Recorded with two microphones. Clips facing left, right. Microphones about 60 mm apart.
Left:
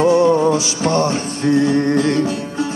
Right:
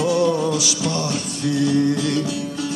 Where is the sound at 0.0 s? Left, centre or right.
Left.